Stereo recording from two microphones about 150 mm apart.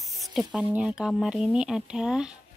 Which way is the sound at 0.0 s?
Centre (ahead or behind).